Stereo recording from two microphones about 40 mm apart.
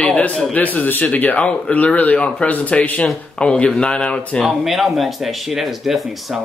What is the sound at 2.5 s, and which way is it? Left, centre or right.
Speech, left.